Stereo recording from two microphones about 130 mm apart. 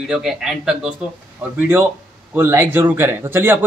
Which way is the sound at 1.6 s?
15° right (ahead or behind).